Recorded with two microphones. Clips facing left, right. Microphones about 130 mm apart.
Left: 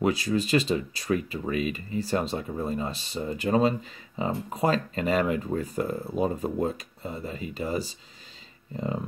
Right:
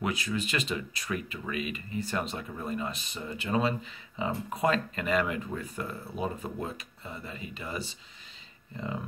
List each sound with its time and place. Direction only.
0.0 s speech: 35° left (ahead or behind)